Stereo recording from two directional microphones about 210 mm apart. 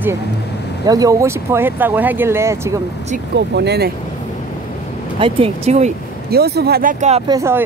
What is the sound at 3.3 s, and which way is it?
Speech, 55° right (ahead or behind).